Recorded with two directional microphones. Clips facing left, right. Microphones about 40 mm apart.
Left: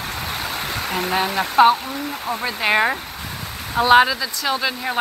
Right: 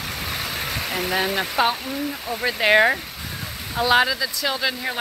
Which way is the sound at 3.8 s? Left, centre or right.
Centre.